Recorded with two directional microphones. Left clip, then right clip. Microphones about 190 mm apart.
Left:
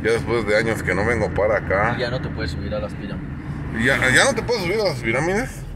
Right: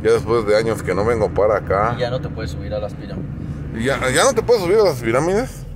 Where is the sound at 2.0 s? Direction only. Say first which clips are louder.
Right 2 dB; 55° right (ahead or behind).